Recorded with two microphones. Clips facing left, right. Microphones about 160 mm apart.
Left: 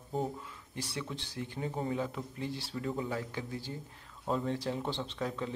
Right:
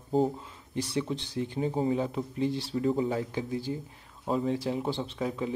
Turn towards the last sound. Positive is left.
turn(degrees=-10)  # may be behind; listen again after turning